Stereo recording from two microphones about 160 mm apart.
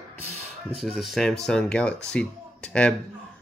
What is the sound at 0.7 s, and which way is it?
Speech, centre (ahead or behind).